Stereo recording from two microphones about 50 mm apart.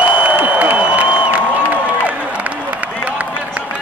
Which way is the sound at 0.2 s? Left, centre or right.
Right.